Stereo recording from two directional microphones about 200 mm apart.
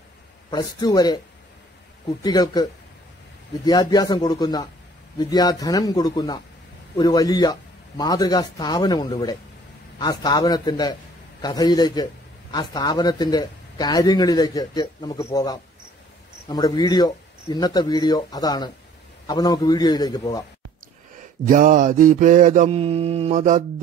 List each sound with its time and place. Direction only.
0.5 s a man's voice: 20° left (ahead or behind)
21.5 s mantra: 40° right (ahead or behind)